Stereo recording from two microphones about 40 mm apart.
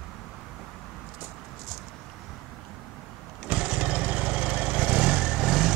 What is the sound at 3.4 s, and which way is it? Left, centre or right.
Vehicle, right.